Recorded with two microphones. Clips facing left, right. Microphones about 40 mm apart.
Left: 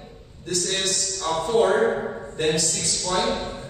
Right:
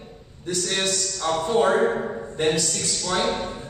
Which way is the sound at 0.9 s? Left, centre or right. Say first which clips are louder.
Right 1 dB; centre.